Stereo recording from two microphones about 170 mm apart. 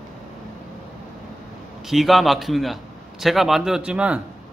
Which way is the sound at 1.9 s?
Centre (ahead or behind).